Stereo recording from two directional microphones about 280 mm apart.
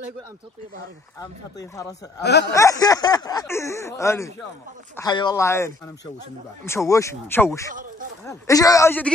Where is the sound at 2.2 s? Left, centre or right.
Left.